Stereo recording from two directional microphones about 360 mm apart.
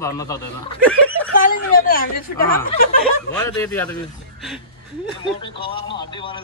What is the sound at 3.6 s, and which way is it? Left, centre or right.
Speech, centre.